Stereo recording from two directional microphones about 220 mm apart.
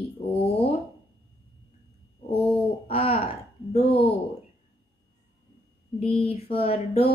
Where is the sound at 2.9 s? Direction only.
25° left (ahead or behind).